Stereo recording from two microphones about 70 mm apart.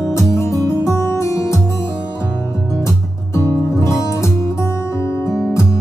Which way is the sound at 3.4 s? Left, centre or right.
Left.